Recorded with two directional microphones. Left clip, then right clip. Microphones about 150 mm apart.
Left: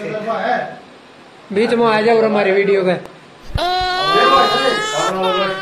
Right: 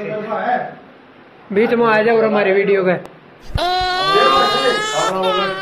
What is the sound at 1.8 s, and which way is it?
Speech, 20° left (ahead or behind).